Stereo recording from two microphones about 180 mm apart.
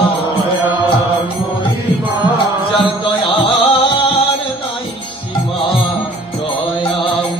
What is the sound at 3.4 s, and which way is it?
Music, 30° left (ahead or behind).